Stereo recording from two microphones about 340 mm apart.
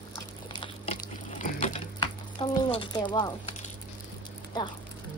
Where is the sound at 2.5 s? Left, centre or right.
Centre.